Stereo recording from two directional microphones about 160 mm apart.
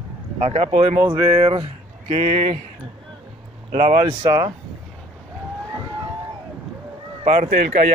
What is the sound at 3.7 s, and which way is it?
Speech, 40° right (ahead or behind).